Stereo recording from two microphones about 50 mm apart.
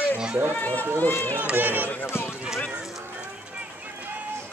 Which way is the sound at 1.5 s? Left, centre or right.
Right.